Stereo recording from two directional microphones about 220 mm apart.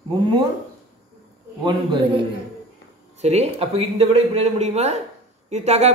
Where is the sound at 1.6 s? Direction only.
20° right (ahead or behind).